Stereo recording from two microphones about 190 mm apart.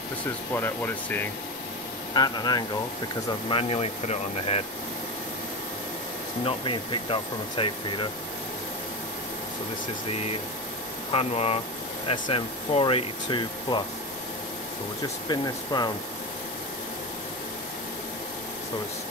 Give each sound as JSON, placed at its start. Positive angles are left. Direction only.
{"t": 0.5, "sound": "speech", "side_deg": 10}
{"t": 6.4, "sound": "speech", "side_deg": 25}
{"t": 11.1, "sound": "speech", "side_deg": 30}
{"t": 15.2, "sound": "speech", "side_deg": 20}